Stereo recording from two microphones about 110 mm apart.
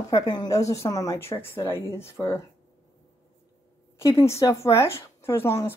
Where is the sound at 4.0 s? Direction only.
25° left (ahead or behind).